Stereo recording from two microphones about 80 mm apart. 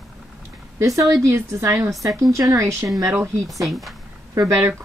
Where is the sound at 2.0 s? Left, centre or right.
Right.